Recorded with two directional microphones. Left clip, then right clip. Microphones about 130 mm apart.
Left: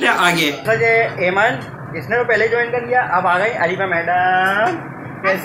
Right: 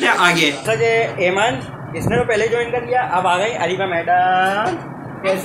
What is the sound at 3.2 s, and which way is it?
Speech, 10° left (ahead or behind).